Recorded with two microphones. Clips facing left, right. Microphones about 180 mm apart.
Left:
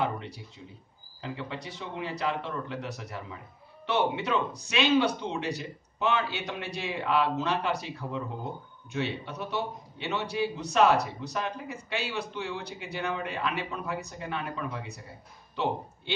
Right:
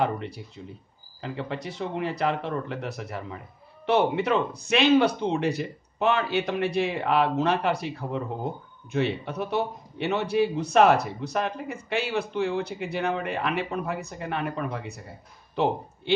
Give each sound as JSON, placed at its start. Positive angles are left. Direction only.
{"t": 0.6, "sound": "a man's voice", "side_deg": -50}